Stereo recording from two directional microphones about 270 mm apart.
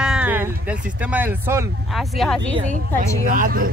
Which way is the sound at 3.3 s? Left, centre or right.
Right.